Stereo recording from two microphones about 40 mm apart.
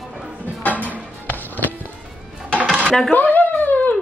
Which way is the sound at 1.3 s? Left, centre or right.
Left.